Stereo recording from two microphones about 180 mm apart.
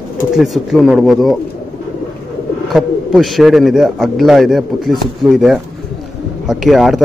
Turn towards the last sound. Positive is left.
turn(degrees=0)  # may be behind; listen again after turning